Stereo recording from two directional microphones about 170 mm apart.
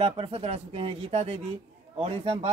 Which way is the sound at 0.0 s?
35° right (ahead or behind).